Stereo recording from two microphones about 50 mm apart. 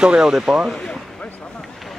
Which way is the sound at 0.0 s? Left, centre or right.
Centre.